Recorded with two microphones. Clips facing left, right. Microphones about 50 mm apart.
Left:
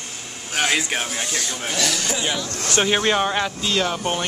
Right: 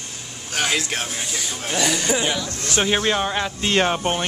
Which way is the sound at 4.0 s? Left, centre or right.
Centre.